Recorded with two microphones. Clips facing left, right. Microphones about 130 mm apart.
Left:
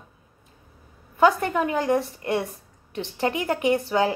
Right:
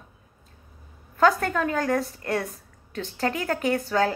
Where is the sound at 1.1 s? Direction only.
15° left (ahead or behind).